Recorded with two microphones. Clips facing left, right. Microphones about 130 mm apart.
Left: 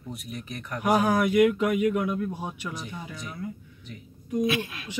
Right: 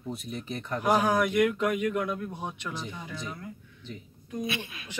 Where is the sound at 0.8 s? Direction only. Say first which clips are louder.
Left 2 dB; 5° left (ahead or behind).